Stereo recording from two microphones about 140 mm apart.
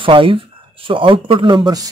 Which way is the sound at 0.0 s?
40° right (ahead or behind).